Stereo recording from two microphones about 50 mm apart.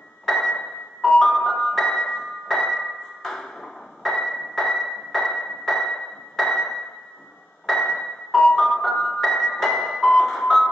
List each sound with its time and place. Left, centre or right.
0.2 s a sound: centre
0.6 s music: centre
1.3 s music: centre
2.6 s ping: centre
6.3 s a sound: centre
7.6 s music: centre